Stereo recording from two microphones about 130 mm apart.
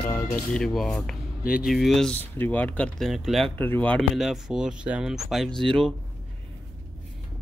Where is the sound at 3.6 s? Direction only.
15° left (ahead or behind).